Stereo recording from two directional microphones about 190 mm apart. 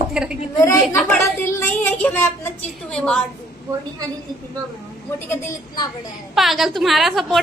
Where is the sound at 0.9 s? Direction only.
15° left (ahead or behind).